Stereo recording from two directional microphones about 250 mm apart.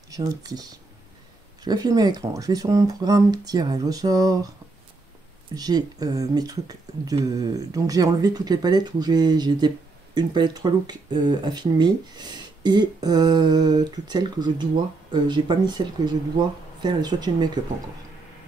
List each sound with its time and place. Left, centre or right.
0.1 s speech: centre
5.5 s speech: centre